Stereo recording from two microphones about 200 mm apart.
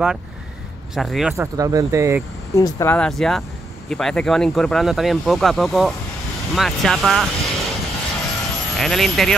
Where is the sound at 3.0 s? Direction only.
Centre (ahead or behind).